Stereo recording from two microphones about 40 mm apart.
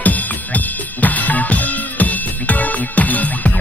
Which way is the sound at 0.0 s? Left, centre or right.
Left.